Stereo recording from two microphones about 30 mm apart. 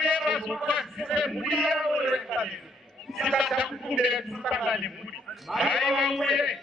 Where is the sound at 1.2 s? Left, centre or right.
Centre.